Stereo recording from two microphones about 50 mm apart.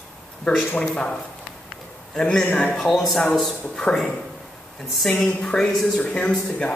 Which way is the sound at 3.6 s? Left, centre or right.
Centre.